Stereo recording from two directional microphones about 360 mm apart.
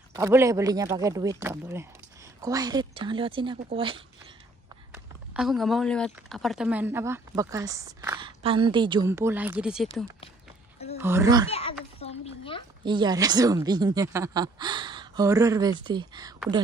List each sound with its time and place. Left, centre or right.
0.1 s speech: centre
4.9 s speech: centre
12.0 s a sound: centre
12.8 s speech: centre